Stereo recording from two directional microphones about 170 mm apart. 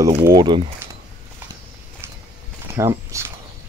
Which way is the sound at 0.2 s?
25° right (ahead or behind).